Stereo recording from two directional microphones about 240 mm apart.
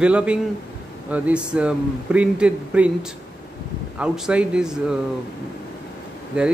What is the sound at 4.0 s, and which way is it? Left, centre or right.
A man's voice, centre.